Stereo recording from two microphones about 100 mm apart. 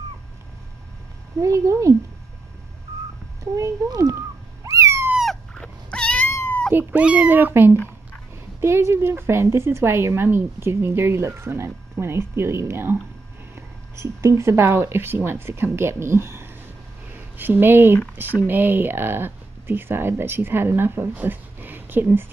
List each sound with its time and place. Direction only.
1.4 s speech: 30° right (ahead or behind)
3.5 s speech: 35° right (ahead or behind)
4.6 s cat: 30° right (ahead or behind)
5.1 s cat: centre (ahead or behind)
6.2 s cat: 20° left (ahead or behind)
6.7 s a woman's voice: 20° right (ahead or behind)
13.9 s a woman's voice: 25° right (ahead or behind)